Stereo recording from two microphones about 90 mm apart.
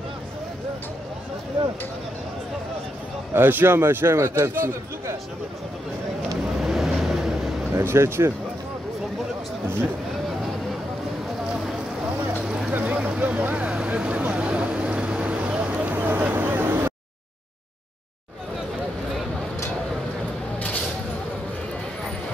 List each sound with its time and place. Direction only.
3.3 s a man's voice: 25° right (ahead or behind)
6.6 s vehicle: centre (ahead or behind)
7.7 s a man's voice: 30° right (ahead or behind)
12.4 s vehicle: 10° right (ahead or behind)